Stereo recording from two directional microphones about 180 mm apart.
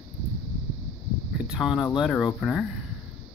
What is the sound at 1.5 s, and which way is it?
Speech, centre (ahead or behind).